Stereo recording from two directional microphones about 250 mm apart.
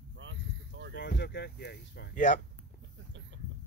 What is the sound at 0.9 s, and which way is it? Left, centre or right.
Speech, left.